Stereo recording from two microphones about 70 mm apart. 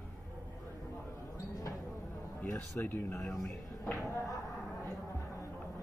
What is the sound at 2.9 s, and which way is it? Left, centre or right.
Speech, left.